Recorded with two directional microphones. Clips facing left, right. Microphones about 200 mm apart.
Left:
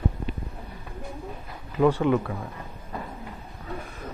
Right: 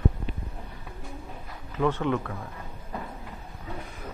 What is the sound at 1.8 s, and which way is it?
Speech, 10° left (ahead or behind).